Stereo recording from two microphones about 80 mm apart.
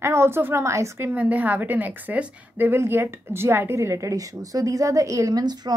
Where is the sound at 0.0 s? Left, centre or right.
Right.